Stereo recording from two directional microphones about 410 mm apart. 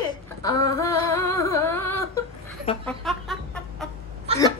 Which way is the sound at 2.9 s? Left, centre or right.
Centre.